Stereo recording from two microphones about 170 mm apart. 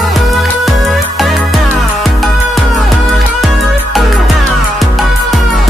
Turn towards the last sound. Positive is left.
turn(degrees=0)  # may be behind; listen again after turning